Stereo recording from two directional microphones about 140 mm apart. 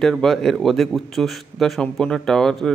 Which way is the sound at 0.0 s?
5° left (ahead or behind).